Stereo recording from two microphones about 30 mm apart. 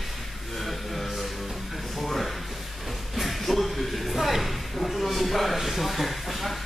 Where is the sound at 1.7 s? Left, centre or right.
Centre.